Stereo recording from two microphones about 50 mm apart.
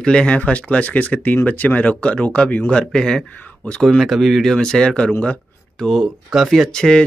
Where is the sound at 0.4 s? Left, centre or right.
Left.